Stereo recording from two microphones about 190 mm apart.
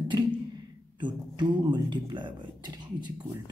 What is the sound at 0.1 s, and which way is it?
Speech, 25° right (ahead or behind).